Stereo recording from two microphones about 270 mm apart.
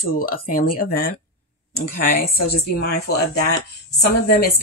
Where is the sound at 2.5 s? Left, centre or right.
Left.